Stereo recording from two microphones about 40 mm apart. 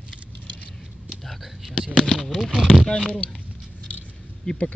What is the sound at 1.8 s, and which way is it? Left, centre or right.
Speech, left.